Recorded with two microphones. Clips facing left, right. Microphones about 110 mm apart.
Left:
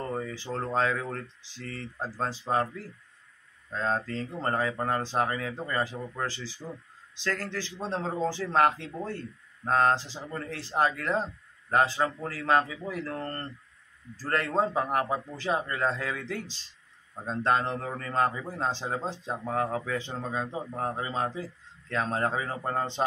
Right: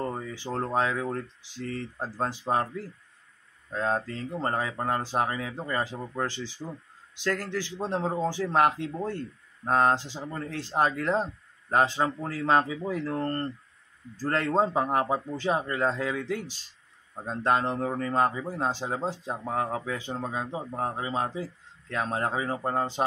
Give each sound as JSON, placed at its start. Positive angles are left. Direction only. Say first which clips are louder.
{"t": 0.1, "sound": "a sound", "louder": "left 2 dB", "side_deg": -15}
{"t": 0.6, "sound": "speech", "louder": "right 1 dB", "side_deg": -15}
{"t": 3.7, "sound": "a man's voice", "louder": "right 1 dB", "side_deg": -15}
{"t": 14.2, "sound": "a man's voice", "louder": "right 2 dB", "side_deg": -25}